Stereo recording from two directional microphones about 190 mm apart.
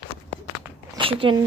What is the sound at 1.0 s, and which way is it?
Speech, 25° right (ahead or behind).